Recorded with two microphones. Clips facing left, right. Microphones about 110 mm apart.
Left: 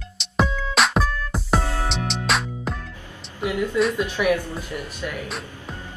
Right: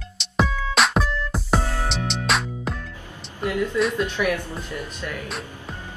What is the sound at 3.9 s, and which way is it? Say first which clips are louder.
Speech: left 2 dB; 15° left (ahead or behind).